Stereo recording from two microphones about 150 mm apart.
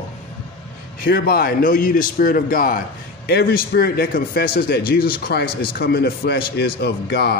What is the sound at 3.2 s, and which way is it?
A man's voice, 90° left.